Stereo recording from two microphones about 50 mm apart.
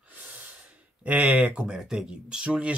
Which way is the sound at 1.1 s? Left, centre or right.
Right.